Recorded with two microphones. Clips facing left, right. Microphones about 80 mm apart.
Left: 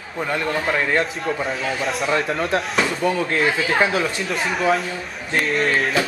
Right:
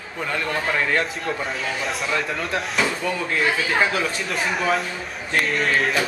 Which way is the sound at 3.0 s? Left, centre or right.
Centre.